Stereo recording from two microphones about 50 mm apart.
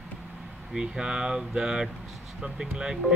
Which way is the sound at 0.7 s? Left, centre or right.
Centre.